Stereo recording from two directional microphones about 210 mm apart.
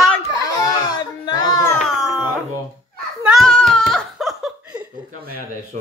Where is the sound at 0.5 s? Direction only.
20° left (ahead or behind).